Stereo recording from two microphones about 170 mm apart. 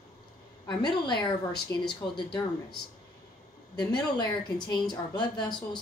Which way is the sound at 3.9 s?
25° left (ahead or behind).